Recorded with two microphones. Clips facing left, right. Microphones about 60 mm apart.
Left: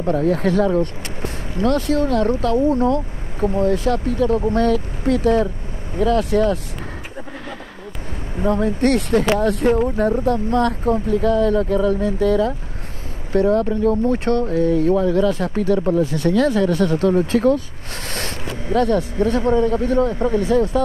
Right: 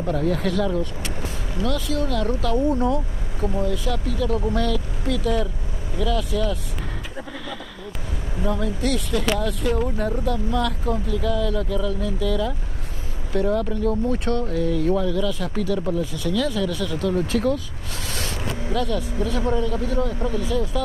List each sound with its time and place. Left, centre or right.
0.0 s speech: left
2.0 s speech: left
8.4 s speech: left
16.0 s speech: left